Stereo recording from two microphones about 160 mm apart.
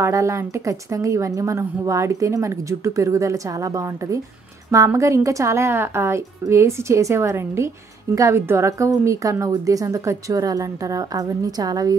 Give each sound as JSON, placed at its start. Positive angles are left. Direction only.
{"t": 0.0, "sound": "a woman's voice", "side_deg": -20}